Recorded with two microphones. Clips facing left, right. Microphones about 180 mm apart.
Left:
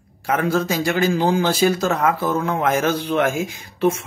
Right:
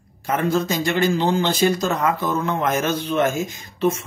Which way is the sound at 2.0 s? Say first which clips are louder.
Left 2 dB; 55° left (ahead or behind).